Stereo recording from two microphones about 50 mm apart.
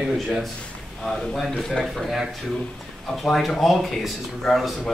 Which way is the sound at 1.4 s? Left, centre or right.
Centre.